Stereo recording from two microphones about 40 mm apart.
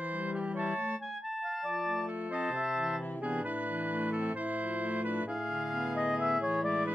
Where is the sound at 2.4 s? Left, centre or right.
Right.